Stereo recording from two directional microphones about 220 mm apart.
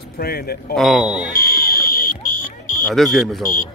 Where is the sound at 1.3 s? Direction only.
45° left (ahead or behind).